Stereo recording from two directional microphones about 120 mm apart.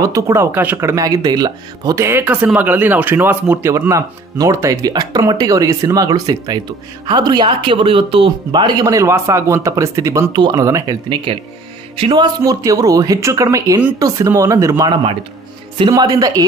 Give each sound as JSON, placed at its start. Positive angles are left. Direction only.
{"t": 0.0, "sound": "speech", "side_deg": -25}
{"t": 2.0, "sound": "speech", "side_deg": -15}
{"t": 10.3, "sound": "speech", "side_deg": -40}
{"t": 10.6, "sound": "speech", "side_deg": -25}
{"t": 11.3, "sound": "speech", "side_deg": -45}
{"t": 16.0, "sound": "speech", "side_deg": -30}